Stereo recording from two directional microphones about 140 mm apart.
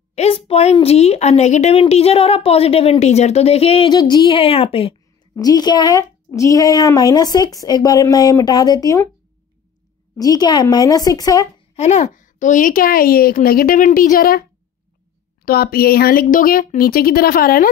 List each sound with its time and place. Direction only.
0.1 s a sound: 45° left (ahead or behind)
0.7 s a woman's voice: 50° left (ahead or behind)
3.9 s a woman's voice: 30° left (ahead or behind)
5.3 s speech: 25° left (ahead or behind)
10.1 s speech: 25° left (ahead or behind)
11.7 s a woman's voice: 55° left (ahead or behind); by 17.6 s 90° left